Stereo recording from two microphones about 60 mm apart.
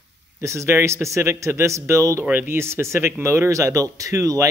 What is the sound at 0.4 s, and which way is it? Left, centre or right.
Speech, right.